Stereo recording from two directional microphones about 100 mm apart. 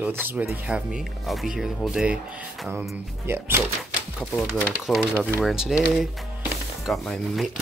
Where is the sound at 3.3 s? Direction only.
25° right (ahead or behind).